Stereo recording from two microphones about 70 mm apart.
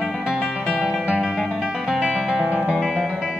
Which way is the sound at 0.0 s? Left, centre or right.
Centre.